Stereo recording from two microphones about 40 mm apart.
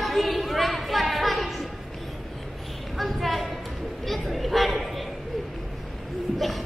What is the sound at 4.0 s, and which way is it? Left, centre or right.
Chatter, centre.